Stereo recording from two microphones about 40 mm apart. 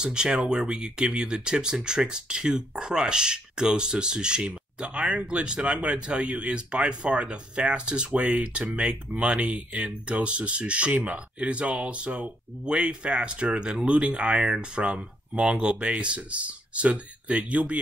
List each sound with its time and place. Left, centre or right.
0.0 s speech: right